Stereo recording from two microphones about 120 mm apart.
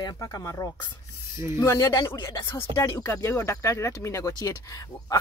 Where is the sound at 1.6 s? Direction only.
25° left (ahead or behind).